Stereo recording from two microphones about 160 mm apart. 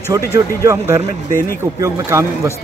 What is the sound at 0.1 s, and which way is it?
A man's voice, 20° right (ahead or behind).